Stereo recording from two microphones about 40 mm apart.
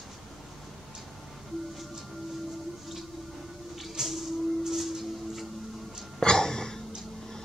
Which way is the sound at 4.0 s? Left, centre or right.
Centre.